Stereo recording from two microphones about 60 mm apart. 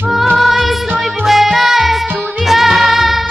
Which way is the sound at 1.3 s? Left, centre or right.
Centre.